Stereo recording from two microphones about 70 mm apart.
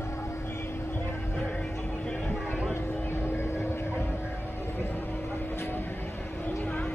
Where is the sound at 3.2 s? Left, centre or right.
Left.